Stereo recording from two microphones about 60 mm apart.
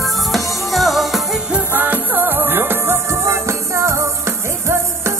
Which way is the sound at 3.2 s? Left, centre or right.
Right.